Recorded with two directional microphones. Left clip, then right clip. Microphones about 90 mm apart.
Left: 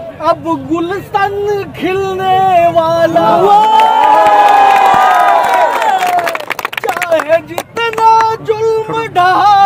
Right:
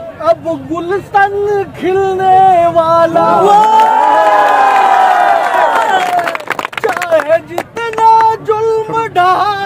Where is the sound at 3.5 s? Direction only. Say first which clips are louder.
Right 1 dB; 90° left.